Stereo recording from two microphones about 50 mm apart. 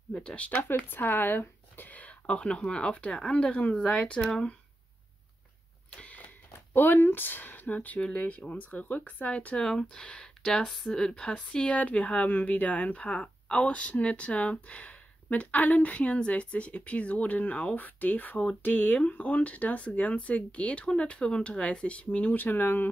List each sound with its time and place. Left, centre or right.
0.1 s speech: left
0.8 s speech: left; by 4.6 s centre
5.9 s speech: left
9.6 s speech: centre; by 18.9 s left
18.9 s speech: left